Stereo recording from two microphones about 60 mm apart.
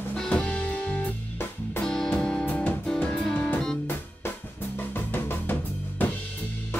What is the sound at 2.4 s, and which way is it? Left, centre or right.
Music, left.